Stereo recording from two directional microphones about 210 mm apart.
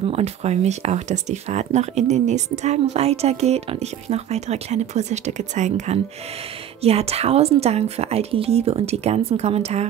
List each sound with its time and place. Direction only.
0.0 s a woman's voice: 30° right (ahead or behind)